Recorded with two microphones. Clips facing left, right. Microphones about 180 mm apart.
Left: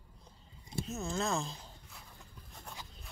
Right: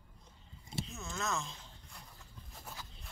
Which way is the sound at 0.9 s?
35° left (ahead or behind).